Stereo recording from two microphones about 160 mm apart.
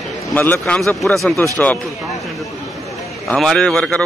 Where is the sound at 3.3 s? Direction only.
5° left (ahead or behind).